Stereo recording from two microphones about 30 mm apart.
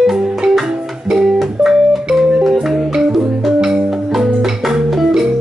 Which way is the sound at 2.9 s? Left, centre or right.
Centre.